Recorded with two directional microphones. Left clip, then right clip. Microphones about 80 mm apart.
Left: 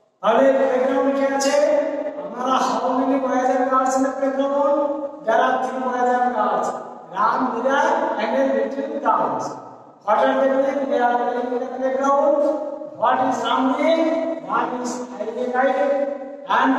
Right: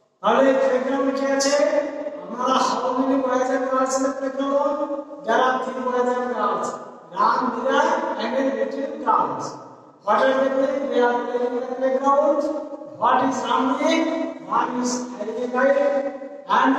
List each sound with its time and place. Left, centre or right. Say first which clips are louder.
0.2 s a man's voice: left 1 dB; right